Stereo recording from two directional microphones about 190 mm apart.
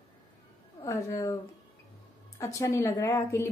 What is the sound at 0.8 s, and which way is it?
A woman's voice, 15° left (ahead or behind).